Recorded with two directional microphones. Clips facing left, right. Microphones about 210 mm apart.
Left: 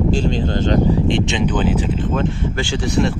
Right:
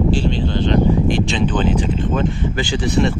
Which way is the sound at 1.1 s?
20° left (ahead or behind).